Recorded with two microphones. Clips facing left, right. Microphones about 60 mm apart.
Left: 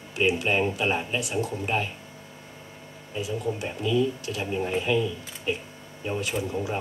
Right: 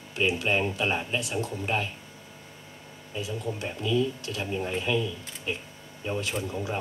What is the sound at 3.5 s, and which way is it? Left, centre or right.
Speech, centre.